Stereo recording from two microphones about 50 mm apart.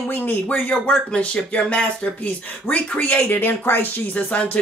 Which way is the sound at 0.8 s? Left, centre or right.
Left.